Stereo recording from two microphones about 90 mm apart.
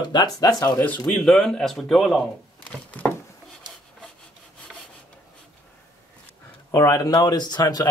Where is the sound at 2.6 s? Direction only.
15° left (ahead or behind).